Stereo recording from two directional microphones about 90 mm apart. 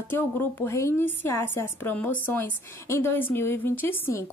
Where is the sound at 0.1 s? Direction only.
25° left (ahead or behind).